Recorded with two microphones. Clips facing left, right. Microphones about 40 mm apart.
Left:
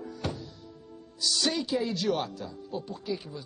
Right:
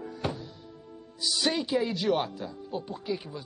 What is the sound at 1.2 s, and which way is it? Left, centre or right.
Speech, centre.